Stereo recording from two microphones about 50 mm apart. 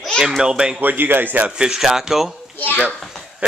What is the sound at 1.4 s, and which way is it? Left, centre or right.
Speech, centre.